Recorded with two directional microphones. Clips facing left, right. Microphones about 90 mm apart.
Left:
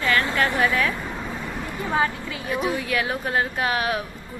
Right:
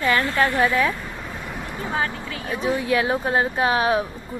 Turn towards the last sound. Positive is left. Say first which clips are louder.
# right 5 dB
turn(degrees=-30)  # may be behind; listen again after turning